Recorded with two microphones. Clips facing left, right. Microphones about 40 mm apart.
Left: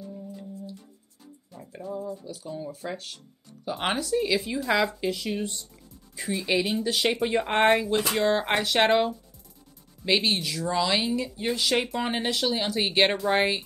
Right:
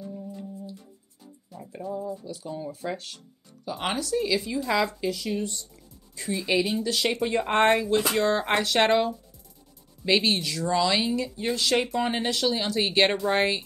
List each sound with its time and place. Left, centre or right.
0.0 s music: centre
2.1 s speech: centre
3.6 s speech: centre
5.1 s speech: left
6.3 s speech: centre
6.8 s speech: centre